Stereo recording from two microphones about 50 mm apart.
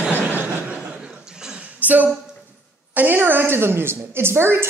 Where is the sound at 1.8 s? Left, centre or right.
Right.